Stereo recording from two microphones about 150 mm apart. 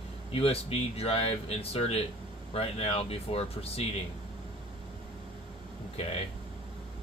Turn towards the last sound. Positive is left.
turn(degrees=45)  # may be behind; listen again after turning